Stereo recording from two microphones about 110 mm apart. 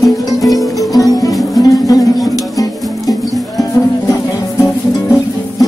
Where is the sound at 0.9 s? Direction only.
35° left (ahead or behind).